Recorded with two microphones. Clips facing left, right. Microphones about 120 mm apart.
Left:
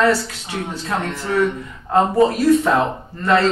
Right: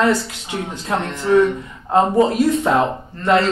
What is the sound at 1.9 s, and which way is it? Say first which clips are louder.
Speech: right 1 dB; 20° right (ahead or behind).